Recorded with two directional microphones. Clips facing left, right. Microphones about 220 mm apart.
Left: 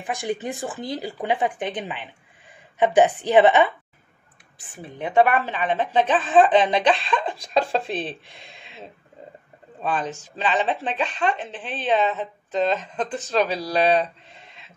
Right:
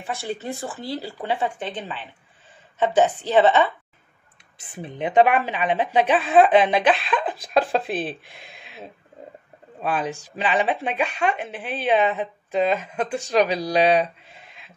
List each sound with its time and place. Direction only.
0.0 s speech: 15° left (ahead or behind)
4.6 s a woman's voice: 20° right (ahead or behind)